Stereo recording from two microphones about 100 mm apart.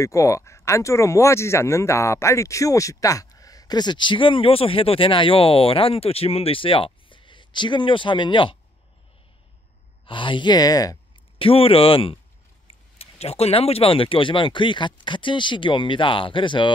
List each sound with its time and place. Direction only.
0.0 s speech: 30° left (ahead or behind); by 8.5 s 55° left (ahead or behind)
10.0 s speech: 55° left (ahead or behind); by 11.0 s 40° left (ahead or behind)
11.3 s speech: 70° left (ahead or behind)
12.6 s speech: 90° left; by 16.7 s 55° left (ahead or behind)